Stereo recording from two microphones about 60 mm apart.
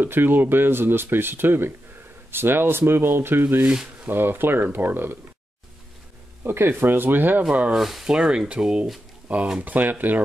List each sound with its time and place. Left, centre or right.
0.0 s speech: right
3.6 s speech: centre
4.1 s speech: right
6.4 s speech: right
7.7 s speech: centre; by 10.2 s right